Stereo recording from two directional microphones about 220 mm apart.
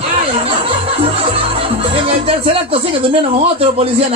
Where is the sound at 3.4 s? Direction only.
25° right (ahead or behind).